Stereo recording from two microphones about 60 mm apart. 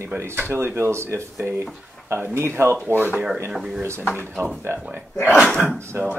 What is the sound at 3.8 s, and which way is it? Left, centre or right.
Speech, right.